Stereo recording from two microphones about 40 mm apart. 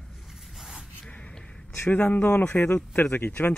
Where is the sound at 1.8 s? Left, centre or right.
Left.